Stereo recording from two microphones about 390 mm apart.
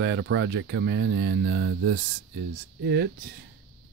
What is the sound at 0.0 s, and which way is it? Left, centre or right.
Speech, right.